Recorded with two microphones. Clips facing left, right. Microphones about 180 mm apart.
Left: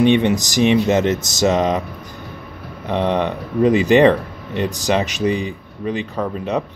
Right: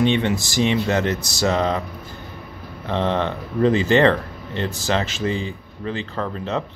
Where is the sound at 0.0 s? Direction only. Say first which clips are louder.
Left 5 dB; 15° left (ahead or behind).